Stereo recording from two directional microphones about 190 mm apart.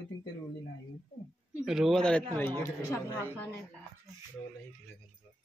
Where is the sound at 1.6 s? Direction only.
Centre (ahead or behind); by 3.5 s 15° left (ahead or behind).